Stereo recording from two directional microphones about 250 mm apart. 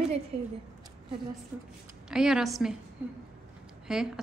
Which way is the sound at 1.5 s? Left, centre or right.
Centre.